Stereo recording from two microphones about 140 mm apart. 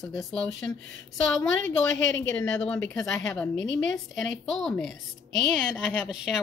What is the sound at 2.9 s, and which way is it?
Speech, 20° left (ahead or behind).